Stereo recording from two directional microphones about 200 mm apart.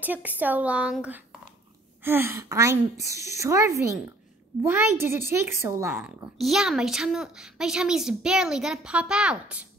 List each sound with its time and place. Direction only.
0.0 s a woman's voice: 10° right (ahead or behind)